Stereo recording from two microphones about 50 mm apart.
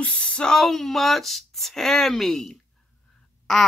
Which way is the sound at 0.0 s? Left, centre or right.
Left.